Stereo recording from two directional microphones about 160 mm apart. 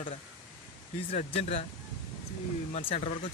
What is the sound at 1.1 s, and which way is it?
Speech, 40° left (ahead or behind).